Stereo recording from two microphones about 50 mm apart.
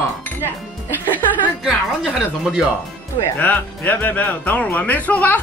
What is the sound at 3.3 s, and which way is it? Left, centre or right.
Speech, left.